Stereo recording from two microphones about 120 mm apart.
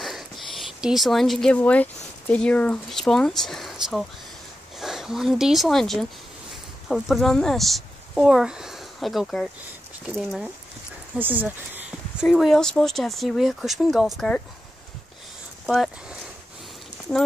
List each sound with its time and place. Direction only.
0.0 s a sound: centre (ahead or behind)
1.6 s speech: 10° left (ahead or behind)
11.1 s speech: 15° right (ahead or behind)
12.3 s speech: centre (ahead or behind)
15.6 s speech: centre (ahead or behind)